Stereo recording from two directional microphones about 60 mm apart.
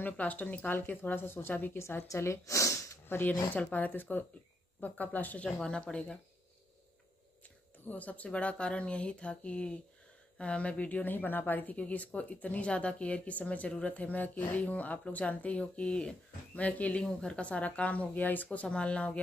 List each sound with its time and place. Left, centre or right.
0.0 s speech: left
1.8 s a woman's voice: left
2.1 s speech: left
3.1 s speech: left
5.6 s speech: centre
7.8 s speech: left
17.0 s speech: centre
17.4 s speech: left